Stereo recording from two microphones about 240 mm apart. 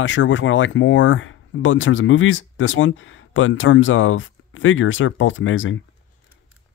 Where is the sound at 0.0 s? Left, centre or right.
Left.